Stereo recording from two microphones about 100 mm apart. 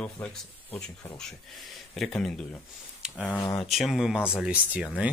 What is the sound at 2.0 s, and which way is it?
Speech, 5° left (ahead or behind).